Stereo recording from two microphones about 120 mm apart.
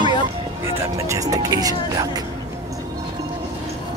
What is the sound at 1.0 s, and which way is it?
Music, 30° right (ahead or behind).